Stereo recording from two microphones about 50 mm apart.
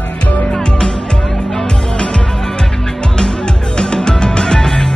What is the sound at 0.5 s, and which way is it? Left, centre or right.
Music, centre.